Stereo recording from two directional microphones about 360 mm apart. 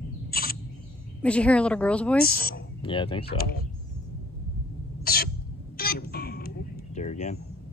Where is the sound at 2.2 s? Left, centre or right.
Left.